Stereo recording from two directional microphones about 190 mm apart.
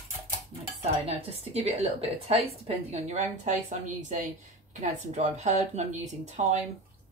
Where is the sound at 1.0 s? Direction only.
35° right (ahead or behind).